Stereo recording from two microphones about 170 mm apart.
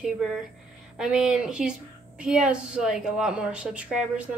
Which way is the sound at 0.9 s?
5° right (ahead or behind).